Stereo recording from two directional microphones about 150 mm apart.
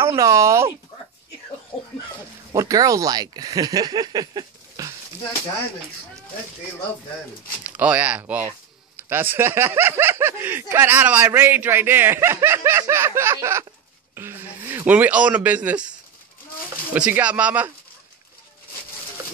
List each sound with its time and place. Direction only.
0.2 s speech: 20° right (ahead or behind)
2.5 s speech: 20° right (ahead or behind)
7.7 s speech: 10° right (ahead or behind)
16.9 s speech: 10° right (ahead or behind)